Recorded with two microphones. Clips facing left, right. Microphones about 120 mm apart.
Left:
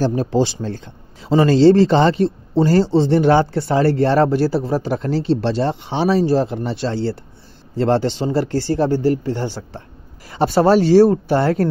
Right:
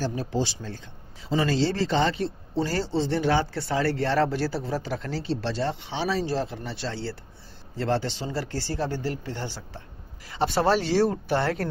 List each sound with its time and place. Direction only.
0.0 s speech: 70° left (ahead or behind); by 5.2 s 45° left (ahead or behind)
5.4 s speech: 60° left (ahead or behind)
10.3 s speech: 40° left (ahead or behind)